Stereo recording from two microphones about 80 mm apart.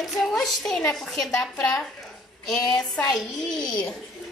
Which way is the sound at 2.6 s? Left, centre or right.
Left.